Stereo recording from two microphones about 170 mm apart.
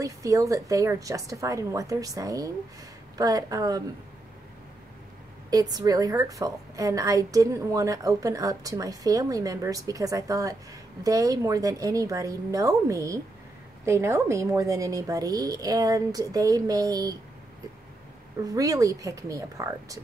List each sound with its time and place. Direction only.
0.0 s a woman's voice: 20° right (ahead or behind)
5.5 s a woman's voice: 20° right (ahead or behind)
18.4 s a woman's voice: 20° right (ahead or behind)